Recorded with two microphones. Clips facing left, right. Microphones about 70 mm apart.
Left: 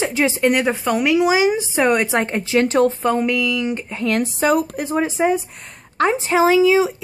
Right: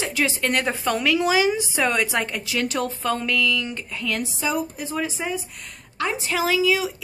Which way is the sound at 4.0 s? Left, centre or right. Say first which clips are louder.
Left 8 dB; left.